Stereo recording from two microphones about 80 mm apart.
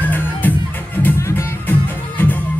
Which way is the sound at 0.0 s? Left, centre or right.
Left.